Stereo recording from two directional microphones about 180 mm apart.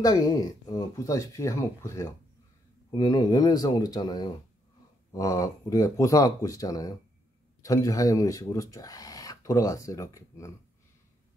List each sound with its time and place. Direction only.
0.0 s speech: 20° left (ahead or behind)